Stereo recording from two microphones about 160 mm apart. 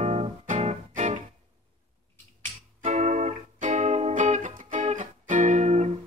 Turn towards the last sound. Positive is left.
turn(degrees=-45)  # may be behind; listen again after turning